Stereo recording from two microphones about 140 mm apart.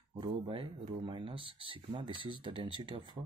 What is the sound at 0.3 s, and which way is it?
Speech, 40° right (ahead or behind).